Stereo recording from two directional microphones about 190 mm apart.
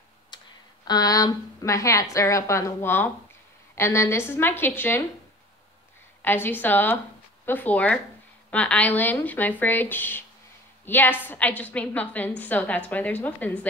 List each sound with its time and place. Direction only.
0.3 s a sound: 25° left (ahead or behind)
0.8 s a woman's voice: 20° left (ahead or behind)
6.2 s a woman's voice: 10° left (ahead or behind)